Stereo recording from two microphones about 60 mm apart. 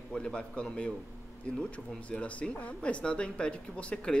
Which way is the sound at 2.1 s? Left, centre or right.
Centre.